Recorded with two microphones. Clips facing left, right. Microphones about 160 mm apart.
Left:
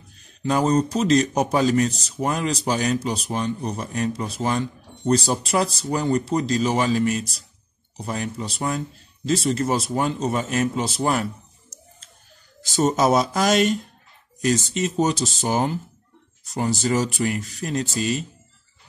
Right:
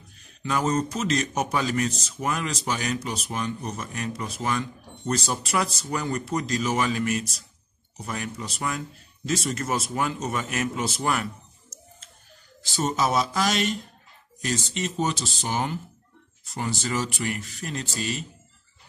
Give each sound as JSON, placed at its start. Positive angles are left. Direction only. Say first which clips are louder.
{"t": 0.4, "sound": "speech", "louder": "left 5 dB", "side_deg": 35}
{"t": 12.7, "sound": "speech", "louder": "left 6 dB", "side_deg": 45}
{"t": 16.8, "sound": "speech", "louder": "left 7 dB", "side_deg": 40}